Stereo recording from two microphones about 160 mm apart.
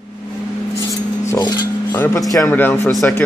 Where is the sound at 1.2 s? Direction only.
25° left (ahead or behind).